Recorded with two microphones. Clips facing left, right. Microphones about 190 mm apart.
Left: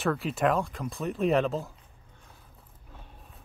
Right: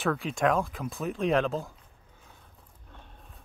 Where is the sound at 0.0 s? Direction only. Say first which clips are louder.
Even; centre (ahead or behind).